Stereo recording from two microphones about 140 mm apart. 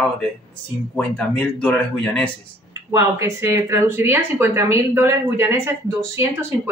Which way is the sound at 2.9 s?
20° right (ahead or behind).